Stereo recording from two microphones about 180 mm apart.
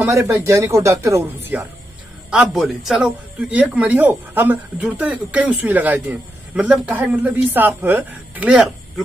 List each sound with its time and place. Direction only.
0.0 s a man's voice: 15° right (ahead or behind)
2.3 s a man's voice: centre (ahead or behind)